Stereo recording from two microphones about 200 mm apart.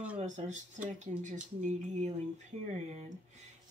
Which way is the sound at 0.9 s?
35° right (ahead or behind).